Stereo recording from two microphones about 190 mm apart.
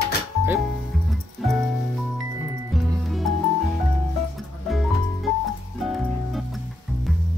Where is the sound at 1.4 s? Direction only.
Centre (ahead or behind).